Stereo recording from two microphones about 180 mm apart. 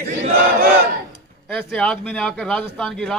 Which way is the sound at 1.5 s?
5° left (ahead or behind).